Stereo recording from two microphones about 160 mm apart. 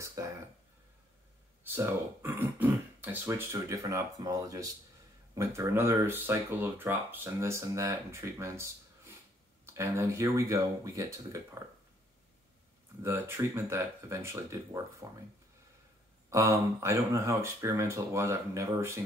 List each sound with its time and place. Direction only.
0.0 s a sound: 20° right (ahead or behind)
1.6 s speech: 15° right (ahead or behind)
13.0 s speech: 15° right (ahead or behind)
16.3 s speech: 20° right (ahead or behind)